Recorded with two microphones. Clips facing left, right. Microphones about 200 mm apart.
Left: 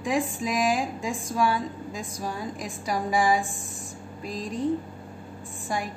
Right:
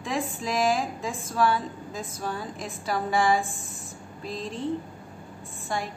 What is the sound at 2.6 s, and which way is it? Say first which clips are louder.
Speech: even; 15° left (ahead or behind).